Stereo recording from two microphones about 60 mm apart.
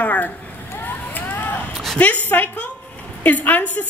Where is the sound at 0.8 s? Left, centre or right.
Left.